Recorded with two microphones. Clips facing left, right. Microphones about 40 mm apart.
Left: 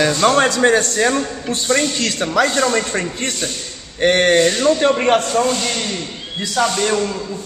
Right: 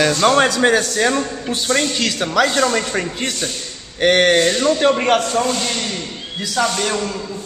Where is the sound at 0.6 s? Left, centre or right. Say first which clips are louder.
Left 1 dB; right.